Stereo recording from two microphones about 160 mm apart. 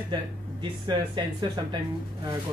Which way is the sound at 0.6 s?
30° right (ahead or behind).